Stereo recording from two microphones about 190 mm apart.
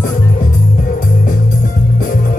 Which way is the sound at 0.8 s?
45° left (ahead or behind).